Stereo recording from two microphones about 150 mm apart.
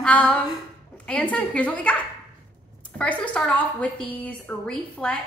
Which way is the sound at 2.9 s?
10° left (ahead or behind).